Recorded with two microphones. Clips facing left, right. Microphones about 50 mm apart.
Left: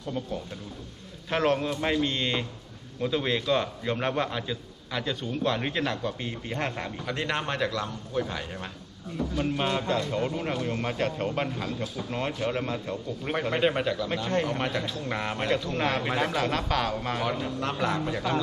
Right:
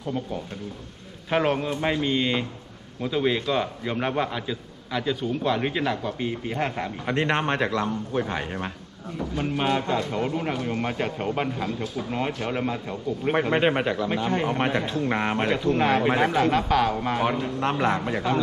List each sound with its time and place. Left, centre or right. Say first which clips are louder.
0.0 s a man's voice: right 3 dB; centre
7.1 s speech: right 6 dB; right
9.4 s a man's voice: right 4 dB; centre
13.3 s speech: right 4 dB; right
15.6 s a man's voice: right 7 dB; centre
17.2 s speech: right 5 dB; right